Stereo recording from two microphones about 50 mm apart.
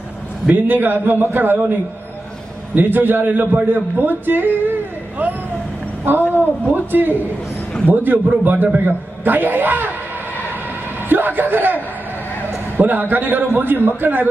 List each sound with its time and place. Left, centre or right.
0.5 s a man's voice: right
2.7 s a man's voice: right
11.1 s a man's voice: right